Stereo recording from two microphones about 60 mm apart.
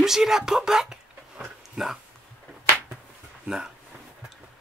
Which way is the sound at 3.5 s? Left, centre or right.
Centre.